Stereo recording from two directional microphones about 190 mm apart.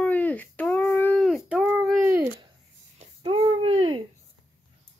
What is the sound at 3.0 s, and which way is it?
Speech, 25° right (ahead or behind).